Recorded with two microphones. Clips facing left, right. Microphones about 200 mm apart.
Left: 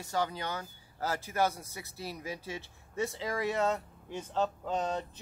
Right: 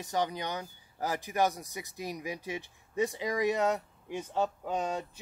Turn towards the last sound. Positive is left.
turn(degrees=-10)  # may be behind; listen again after turning